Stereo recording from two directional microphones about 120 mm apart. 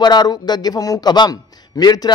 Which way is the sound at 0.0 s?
35° left (ahead or behind).